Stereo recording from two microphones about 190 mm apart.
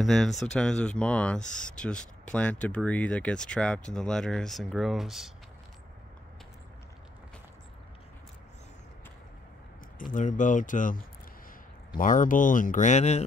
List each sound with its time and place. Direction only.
0.0 s speech: centre (ahead or behind)
9.9 s speech: 45° left (ahead or behind)
12.0 s speech: 45° left (ahead or behind)